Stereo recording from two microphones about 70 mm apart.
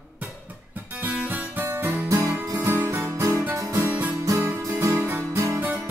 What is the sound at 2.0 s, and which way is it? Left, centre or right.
Music, right.